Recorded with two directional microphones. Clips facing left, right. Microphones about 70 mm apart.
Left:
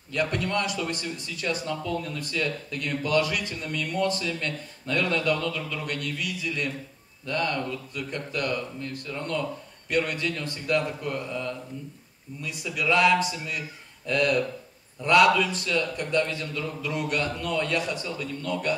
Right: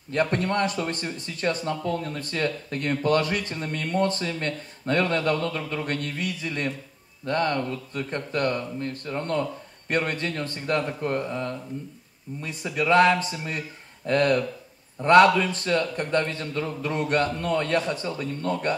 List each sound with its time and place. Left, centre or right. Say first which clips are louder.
0.1 s a man's voice: right 3 dB; right